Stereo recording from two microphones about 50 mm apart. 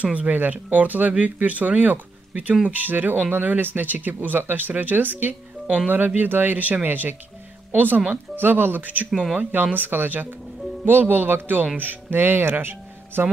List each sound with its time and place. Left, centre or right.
0.0 s speech: right